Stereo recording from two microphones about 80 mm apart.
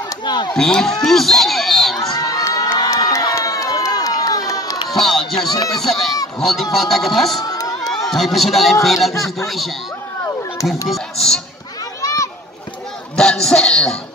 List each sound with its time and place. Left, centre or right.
0.2 s chop: left
0.6 s speech: centre
2.1 s crowd: left
4.8 s a sound: centre
5.8 s speech: centre
7.3 s crowd: left
7.9 s speech: centre
10.9 s speech: centre
12.0 s a sound: left
13.1 s speech: centre